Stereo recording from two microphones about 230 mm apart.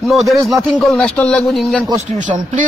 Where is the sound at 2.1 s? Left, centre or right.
Right.